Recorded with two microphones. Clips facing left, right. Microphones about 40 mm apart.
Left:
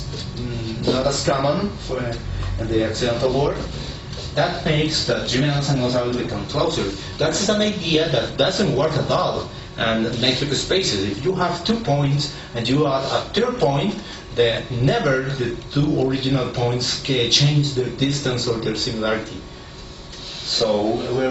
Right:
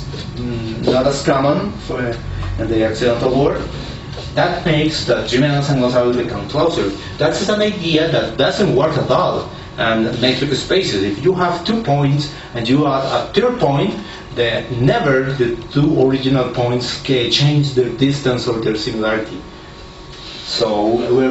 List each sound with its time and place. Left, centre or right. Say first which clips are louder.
0.8 s a man's voice: right 6 dB; right
17.5 s speech: right 6 dB; right
17.8 s a man's voice: right 6 dB; right
20.7 s speech: right 7 dB; centre